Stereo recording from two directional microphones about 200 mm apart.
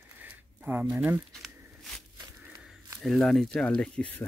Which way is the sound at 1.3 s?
Centre (ahead or behind).